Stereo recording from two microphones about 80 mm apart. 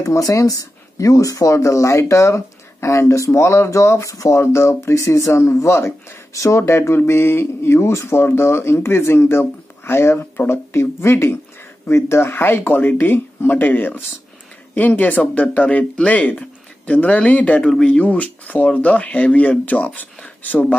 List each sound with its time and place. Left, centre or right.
0.0 s speech: left